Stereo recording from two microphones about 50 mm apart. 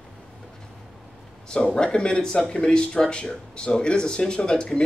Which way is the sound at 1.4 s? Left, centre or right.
Centre.